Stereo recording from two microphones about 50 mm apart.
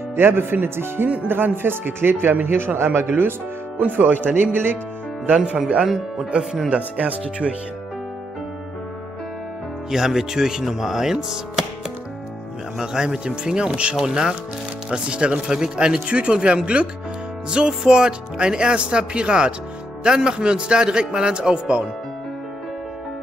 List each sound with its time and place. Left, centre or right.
0.1 s speech: right
3.2 s speech: right
4.5 s speech: right
5.8 s speech: centre
6.7 s speech: right
9.8 s speech: centre
12.7 s speech: centre